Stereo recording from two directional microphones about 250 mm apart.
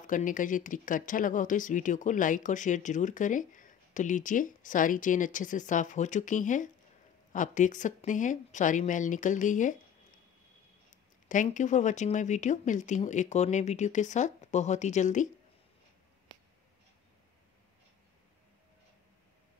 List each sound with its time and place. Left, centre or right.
0.0 s speech: left
11.2 s speech: left